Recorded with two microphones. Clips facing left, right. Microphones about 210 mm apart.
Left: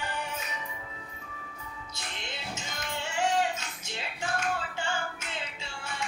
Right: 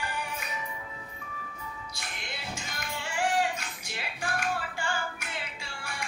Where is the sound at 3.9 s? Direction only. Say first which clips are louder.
Left 1 dB; 25° left (ahead or behind).